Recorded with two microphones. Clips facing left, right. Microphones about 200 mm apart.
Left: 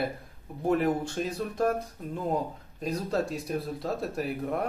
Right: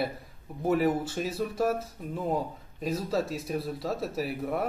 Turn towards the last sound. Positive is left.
turn(degrees=-5)  # may be behind; listen again after turning